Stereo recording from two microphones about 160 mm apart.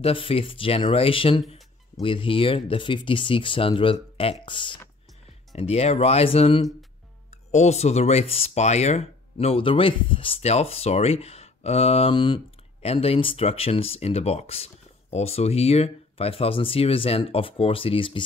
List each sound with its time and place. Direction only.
0.0 s speech: 35° left (ahead or behind)
5.6 s speech: 40° left (ahead or behind)